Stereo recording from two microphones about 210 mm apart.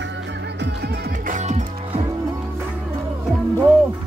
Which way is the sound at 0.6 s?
50° right (ahead or behind).